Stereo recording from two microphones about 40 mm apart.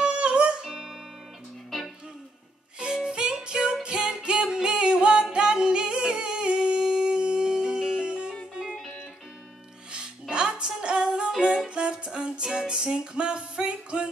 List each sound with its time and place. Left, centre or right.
0.0 s music: right
0.7 s music: centre
2.8 s music: right
10.3 s music: right